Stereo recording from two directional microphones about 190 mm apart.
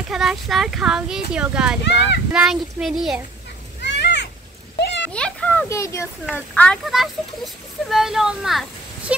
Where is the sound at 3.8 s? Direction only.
65° left (ahead or behind).